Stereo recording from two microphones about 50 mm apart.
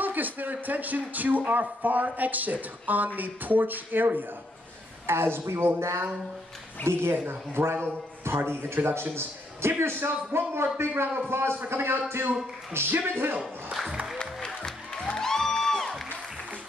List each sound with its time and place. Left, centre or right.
0.0 s a man's voice: right
5.0 s a man's voice: right
14.1 s music: centre